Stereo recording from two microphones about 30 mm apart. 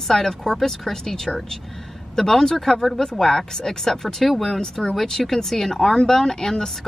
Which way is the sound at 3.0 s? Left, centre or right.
Centre.